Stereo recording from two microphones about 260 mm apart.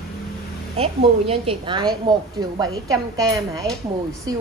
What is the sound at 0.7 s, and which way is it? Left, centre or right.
A woman's voice, right.